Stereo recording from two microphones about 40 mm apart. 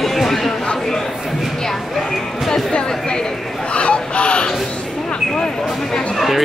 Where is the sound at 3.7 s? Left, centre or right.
Left.